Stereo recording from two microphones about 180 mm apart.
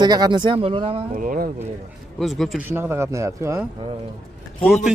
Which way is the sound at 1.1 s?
50° right (ahead or behind).